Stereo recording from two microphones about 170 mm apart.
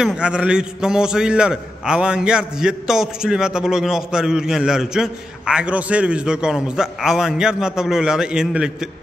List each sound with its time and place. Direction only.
0.0 s a man's voice: 5° right (ahead or behind)